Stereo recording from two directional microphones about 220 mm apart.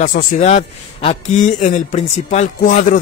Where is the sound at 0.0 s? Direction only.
40° left (ahead or behind).